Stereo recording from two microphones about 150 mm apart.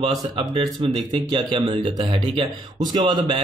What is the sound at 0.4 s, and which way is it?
Speech, 30° right (ahead or behind).